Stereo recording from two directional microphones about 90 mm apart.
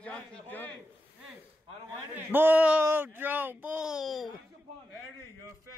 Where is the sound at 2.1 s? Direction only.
20° right (ahead or behind); by 4.3 s centre (ahead or behind).